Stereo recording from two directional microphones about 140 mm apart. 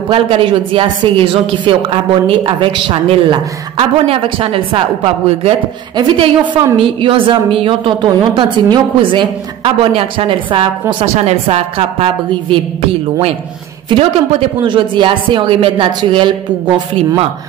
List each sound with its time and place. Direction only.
0.1 s a woman's voice: 40° right (ahead or behind)
13.8 s speech: 40° right (ahead or behind)